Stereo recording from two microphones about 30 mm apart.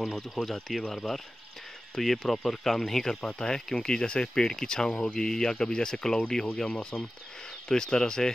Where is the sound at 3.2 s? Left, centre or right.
Left.